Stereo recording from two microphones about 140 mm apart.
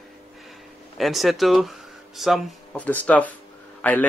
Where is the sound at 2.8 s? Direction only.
10° left (ahead or behind).